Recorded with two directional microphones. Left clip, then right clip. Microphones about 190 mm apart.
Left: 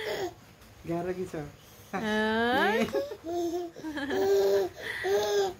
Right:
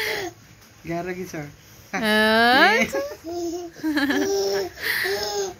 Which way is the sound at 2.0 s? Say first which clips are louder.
Right 11 dB; 20° right (ahead or behind).